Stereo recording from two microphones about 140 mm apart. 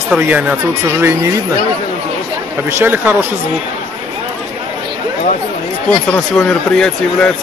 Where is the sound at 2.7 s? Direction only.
15° right (ahead or behind).